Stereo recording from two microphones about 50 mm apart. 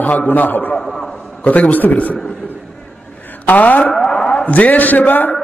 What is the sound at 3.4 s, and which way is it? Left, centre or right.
Speech, left.